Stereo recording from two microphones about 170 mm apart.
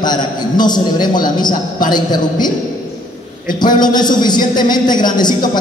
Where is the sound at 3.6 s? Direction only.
25° left (ahead or behind).